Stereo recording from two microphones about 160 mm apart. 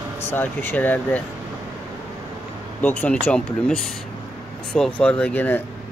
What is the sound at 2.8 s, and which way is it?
Speech, 10° left (ahead or behind).